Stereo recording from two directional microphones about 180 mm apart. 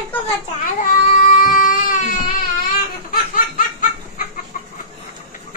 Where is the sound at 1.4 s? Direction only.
50° left (ahead or behind).